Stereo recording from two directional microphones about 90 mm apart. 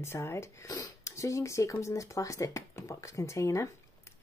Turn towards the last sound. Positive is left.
turn(degrees=35)  # may be behind; listen again after turning